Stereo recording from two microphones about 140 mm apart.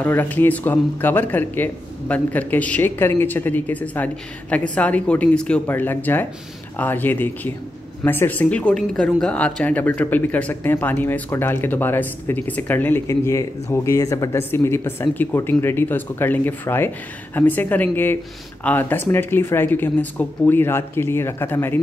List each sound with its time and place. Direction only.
0.0 s speech: 15° left (ahead or behind)